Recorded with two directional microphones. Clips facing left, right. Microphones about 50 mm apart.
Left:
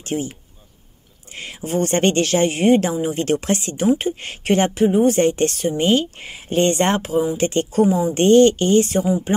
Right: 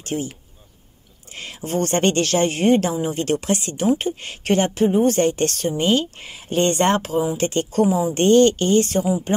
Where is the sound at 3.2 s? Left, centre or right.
Left.